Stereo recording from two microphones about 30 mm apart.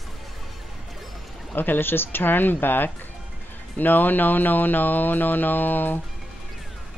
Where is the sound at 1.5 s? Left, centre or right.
Left.